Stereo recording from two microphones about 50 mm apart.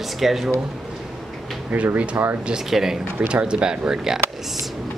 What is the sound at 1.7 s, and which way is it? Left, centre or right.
Speech, right.